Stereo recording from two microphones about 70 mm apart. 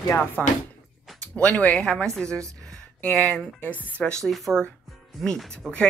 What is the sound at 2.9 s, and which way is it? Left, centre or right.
Speech, left.